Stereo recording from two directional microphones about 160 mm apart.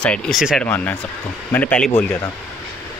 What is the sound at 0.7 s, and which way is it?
Speech, 10° left (ahead or behind).